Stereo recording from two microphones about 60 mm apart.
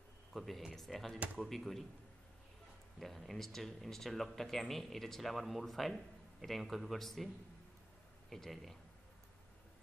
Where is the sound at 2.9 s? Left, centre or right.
Centre.